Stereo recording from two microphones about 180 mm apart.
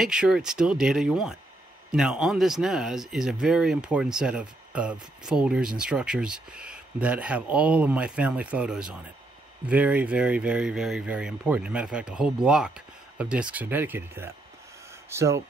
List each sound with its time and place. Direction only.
0.0 s speech: 5° right (ahead or behind)